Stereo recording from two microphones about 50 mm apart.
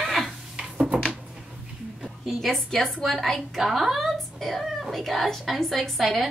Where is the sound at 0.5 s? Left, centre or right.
Centre.